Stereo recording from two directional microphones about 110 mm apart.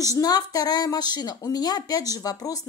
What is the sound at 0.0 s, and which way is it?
A woman's voice, 30° left (ahead or behind).